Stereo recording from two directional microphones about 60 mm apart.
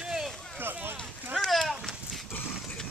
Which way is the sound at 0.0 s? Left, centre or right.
Centre.